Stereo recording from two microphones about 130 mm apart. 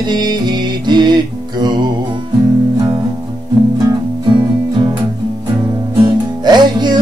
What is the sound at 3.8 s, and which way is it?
Music, 30° right (ahead or behind).